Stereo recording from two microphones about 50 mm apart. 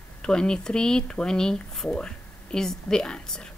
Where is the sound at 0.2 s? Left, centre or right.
Centre.